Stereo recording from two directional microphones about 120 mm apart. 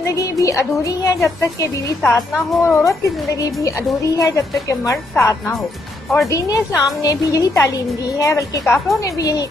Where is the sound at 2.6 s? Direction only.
20° left (ahead or behind).